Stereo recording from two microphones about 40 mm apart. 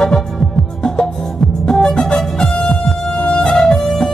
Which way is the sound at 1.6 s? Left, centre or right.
Centre.